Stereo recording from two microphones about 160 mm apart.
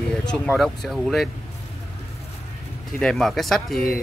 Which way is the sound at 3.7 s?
70° left (ahead or behind).